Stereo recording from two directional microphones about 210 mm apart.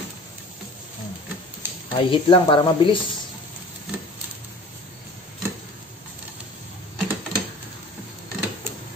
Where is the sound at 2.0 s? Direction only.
20° left (ahead or behind).